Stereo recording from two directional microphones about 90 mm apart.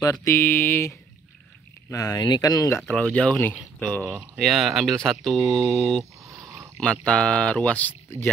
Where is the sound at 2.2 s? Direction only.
50° left (ahead or behind).